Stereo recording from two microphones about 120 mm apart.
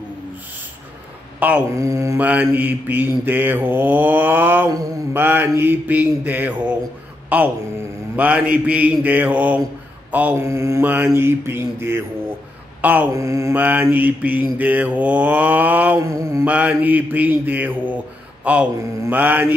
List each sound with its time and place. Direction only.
1.4 s mantra: 10° right (ahead or behind)
1.8 s mantra: 25° right (ahead or behind)
2.1 s mantra: 15° right (ahead or behind)
7.3 s speech: 10° right (ahead or behind)
8.2 s mantra: 10° right (ahead or behind)
13.1 s mantra: 25° right (ahead or behind)
16.0 s mantra: 25° right (ahead or behind)
16.4 s mantra: 10° right (ahead or behind)